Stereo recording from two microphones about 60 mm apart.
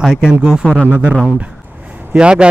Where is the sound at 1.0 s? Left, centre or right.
Centre.